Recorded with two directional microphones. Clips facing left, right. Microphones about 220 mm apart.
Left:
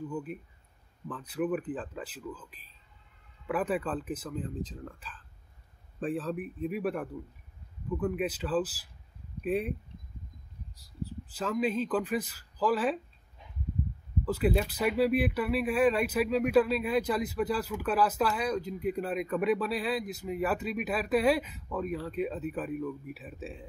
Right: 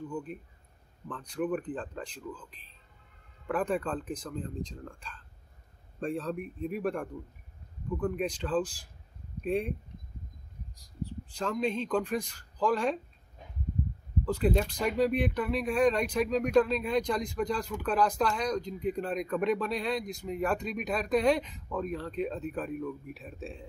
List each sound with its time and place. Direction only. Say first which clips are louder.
0.1 s speech: left 1 dB; 5° left (ahead or behind)
10.8 s speech: right 1 dB; 5° left (ahead or behind)
14.2 s speech: even; 5° left (ahead or behind)